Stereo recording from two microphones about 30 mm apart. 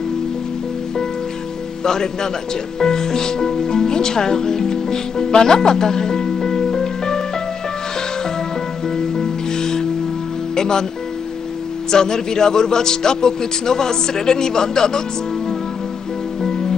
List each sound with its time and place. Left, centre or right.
2.8 s music: left
8.9 s music: centre
10.5 s speech: left
11.9 s speech: left